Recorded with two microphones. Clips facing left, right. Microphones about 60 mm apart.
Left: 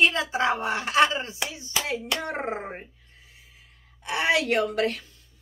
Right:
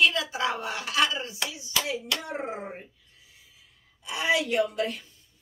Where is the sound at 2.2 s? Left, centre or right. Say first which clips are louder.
Left 4 dB; left.